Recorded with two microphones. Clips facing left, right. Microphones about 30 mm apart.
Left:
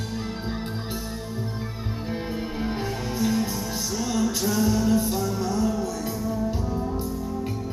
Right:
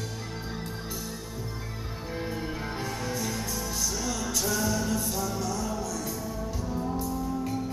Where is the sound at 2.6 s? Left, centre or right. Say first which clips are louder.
Left 4 dB; centre.